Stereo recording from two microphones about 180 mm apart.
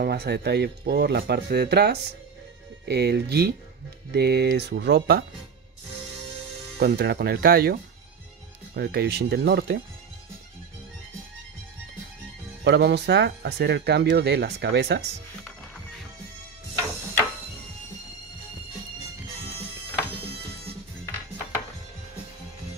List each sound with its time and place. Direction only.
0.0 s speech: 65° right (ahead or behind)
6.8 s speech: 60° right (ahead or behind)
12.6 s speech: 70° right (ahead or behind)